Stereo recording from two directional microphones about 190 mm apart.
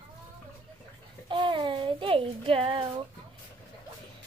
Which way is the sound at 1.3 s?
25° right (ahead or behind).